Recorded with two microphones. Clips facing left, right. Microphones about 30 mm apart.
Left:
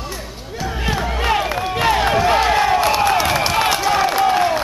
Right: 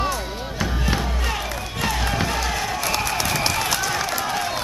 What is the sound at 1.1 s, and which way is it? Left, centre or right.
Music, left.